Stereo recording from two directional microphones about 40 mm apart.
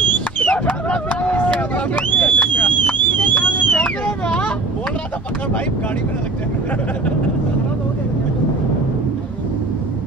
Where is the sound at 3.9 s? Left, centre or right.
Left.